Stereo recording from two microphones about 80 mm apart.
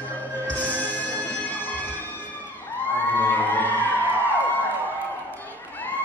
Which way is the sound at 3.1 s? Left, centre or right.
Left.